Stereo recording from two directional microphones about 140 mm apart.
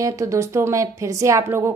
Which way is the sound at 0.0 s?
20° right (ahead or behind).